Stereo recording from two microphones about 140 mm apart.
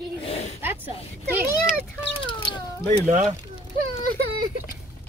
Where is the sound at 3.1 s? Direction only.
55° right (ahead or behind).